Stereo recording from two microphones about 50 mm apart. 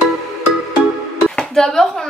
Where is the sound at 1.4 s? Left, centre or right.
Centre.